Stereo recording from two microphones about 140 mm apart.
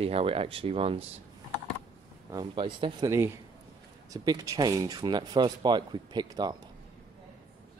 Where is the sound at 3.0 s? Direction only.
20° right (ahead or behind).